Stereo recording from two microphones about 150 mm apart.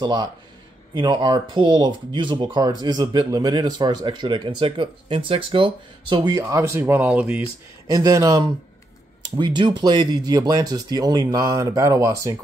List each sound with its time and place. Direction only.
0.0 s speech: 30° right (ahead or behind); by 7.4 s 10° right (ahead or behind)
7.9 s speech: 25° right (ahead or behind)